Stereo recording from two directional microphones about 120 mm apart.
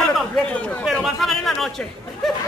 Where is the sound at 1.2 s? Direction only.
Centre (ahead or behind).